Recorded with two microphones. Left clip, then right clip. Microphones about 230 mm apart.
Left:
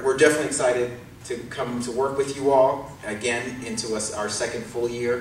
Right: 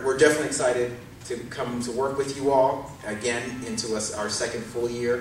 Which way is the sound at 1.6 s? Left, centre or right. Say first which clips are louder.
Left 2 dB; centre.